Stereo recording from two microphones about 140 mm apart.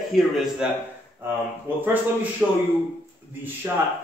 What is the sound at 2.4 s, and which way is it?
Speech, 5° right (ahead or behind).